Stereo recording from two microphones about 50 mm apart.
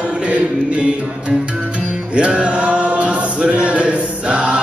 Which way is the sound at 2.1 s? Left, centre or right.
Right.